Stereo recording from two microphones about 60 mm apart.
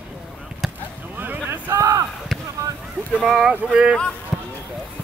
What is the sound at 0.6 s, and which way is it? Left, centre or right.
Basketball bounce, centre.